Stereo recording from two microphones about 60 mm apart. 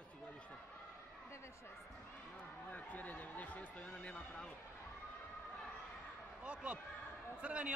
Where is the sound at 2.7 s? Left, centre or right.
Left.